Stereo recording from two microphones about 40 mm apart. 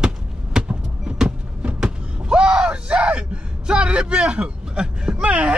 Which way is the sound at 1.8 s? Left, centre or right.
Right.